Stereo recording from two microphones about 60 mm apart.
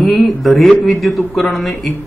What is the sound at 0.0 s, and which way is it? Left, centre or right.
A man's voice, centre.